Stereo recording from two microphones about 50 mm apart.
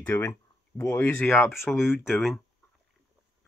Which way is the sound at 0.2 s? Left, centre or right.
Left.